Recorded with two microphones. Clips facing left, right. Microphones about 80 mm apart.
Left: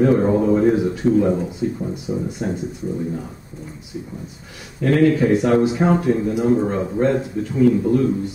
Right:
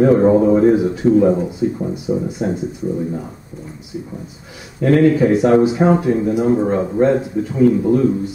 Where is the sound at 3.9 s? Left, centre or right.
Centre.